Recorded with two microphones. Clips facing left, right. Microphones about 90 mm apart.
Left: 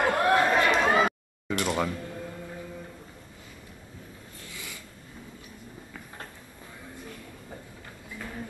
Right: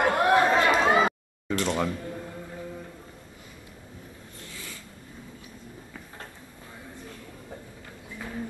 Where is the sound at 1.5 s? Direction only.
5° left (ahead or behind).